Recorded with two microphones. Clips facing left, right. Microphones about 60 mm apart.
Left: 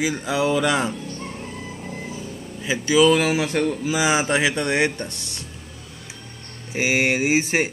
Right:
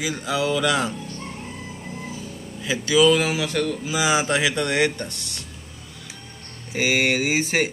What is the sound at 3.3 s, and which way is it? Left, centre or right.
Speech, left.